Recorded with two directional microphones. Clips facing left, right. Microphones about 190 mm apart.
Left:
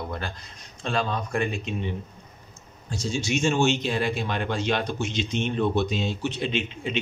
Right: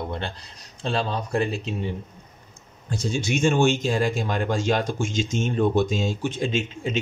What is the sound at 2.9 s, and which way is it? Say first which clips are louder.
Speech: right 2 dB; 55° right (ahead or behind).